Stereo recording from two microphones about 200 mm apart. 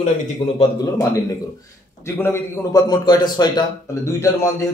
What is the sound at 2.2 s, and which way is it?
A man's voice, 15° left (ahead or behind).